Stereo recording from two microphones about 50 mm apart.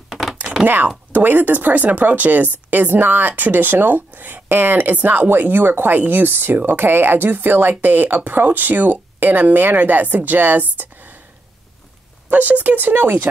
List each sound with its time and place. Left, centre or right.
0.3 s thunk: centre
0.8 s speech: right
12.3 s speech: right